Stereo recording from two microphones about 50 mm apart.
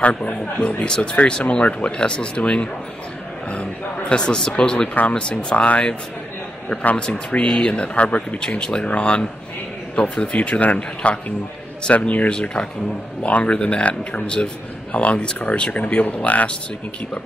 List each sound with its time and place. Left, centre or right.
0.0 s speech: left
4.1 s speech: centre
7.0 s speech: left
12.3 s speech: centre